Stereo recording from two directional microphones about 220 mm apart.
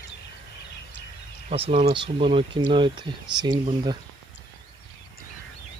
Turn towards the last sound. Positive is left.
turn(degrees=-20)  # may be behind; listen again after turning